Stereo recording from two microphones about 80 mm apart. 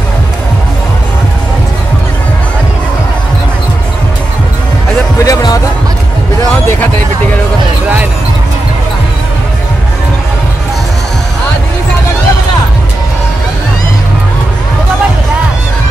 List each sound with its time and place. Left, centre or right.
5.2 s music: left